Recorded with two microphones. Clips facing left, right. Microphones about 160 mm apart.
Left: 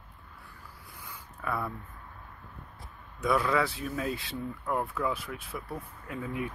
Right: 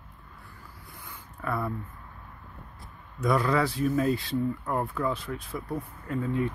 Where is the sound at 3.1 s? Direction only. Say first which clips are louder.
Right 2 dB; centre (ahead or behind).